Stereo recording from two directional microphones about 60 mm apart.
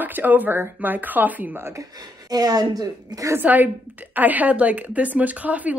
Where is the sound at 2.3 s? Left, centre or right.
Right.